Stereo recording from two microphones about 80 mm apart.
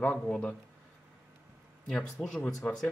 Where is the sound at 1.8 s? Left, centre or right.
Centre.